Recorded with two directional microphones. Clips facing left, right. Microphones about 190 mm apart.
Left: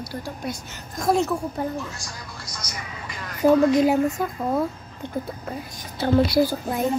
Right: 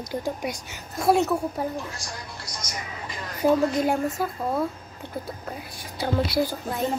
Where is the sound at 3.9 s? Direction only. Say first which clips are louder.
Left 4 dB; centre (ahead or behind).